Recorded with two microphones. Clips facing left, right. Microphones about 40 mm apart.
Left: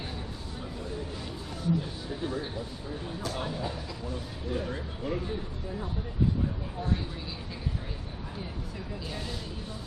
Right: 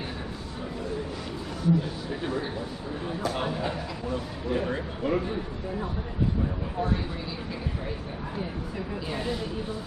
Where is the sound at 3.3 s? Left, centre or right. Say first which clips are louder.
Right 5 dB; right.